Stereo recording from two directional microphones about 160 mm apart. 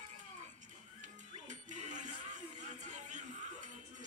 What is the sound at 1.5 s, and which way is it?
Music, 50° right (ahead or behind).